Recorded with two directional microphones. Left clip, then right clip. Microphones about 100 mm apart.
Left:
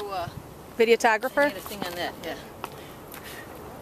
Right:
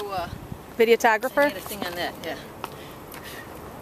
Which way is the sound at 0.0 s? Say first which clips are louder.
Right 2 dB; centre (ahead or behind).